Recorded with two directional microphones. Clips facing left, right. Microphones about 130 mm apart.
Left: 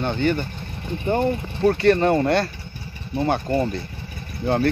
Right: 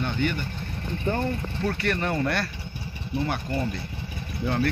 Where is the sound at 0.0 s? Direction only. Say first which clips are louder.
Left 5 dB; 30° left (ahead or behind).